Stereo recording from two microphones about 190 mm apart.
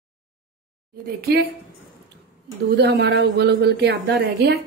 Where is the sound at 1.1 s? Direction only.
55° right (ahead or behind).